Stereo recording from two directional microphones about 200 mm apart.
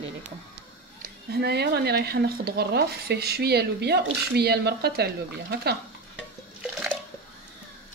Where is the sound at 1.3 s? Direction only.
55° right (ahead or behind).